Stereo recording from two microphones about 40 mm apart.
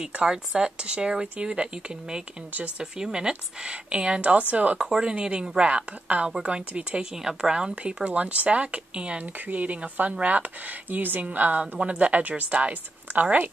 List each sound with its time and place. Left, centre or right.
0.2 s a woman's voice: right
4.2 s speech: right
4.9 s a woman's voice: right
7.2 s a woman's voice: centre
7.7 s speech: right
9.2 s speech: right
11.0 s a woman's voice: right
11.2 s speech: right
11.8 s speech: right